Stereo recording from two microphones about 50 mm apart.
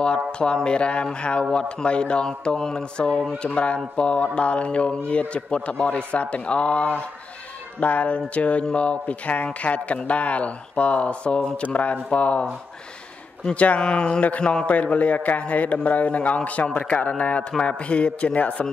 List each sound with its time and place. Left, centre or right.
0.3 s speech: centre
14.7 s speech: left